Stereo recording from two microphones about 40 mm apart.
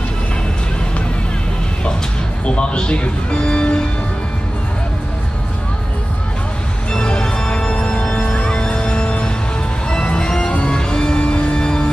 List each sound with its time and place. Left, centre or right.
2.4 s speech: left
6.9 s organ: left
8.1 s music: left